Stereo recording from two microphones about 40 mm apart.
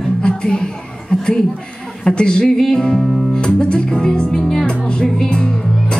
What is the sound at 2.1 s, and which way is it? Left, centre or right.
Speech, left.